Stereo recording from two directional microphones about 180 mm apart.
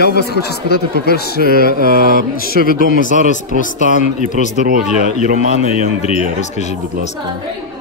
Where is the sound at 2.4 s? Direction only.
55° left (ahead or behind).